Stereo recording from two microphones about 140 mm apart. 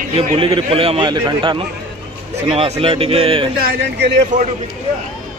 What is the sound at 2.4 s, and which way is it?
Speech, 45° right (ahead or behind).